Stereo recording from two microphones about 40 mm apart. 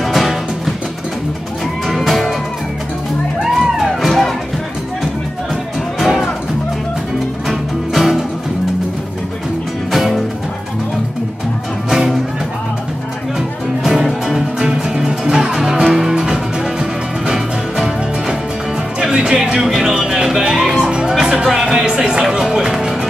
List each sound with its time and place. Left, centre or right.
0.0 s music: centre
1.9 s music: centre
3.4 s music: centre
5.9 s music: centre
7.4 s music: centre
9.9 s music: centre
11.9 s music: centre
13.8 s music: centre
18.9 s music: centre
21.8 s music: right